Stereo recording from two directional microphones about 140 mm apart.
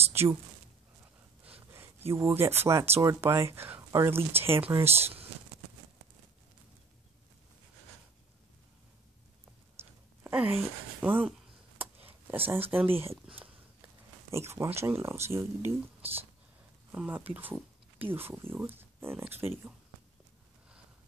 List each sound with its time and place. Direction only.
0.1 s speech: 20° right (ahead or behind)
1.4 s speech: 15° right (ahead or behind)
9.8 s a sound: 15° right (ahead or behind)
14.3 s speech: 20° right (ahead or behind)